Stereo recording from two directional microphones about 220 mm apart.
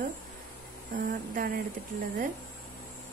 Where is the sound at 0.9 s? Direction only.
40° right (ahead or behind).